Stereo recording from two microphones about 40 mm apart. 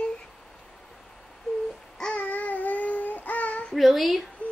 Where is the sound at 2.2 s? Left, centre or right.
Left.